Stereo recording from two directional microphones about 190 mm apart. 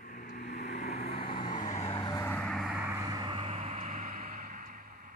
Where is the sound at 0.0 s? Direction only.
50° left (ahead or behind); by 1.3 s 30° left (ahead or behind).